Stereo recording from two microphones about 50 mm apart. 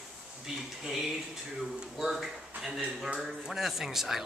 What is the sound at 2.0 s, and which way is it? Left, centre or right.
Speech, centre.